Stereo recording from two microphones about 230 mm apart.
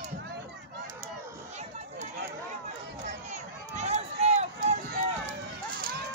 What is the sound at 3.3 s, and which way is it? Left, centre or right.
Run, right.